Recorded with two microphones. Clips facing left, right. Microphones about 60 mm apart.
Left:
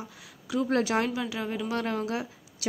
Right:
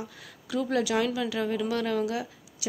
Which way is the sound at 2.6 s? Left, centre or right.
Left.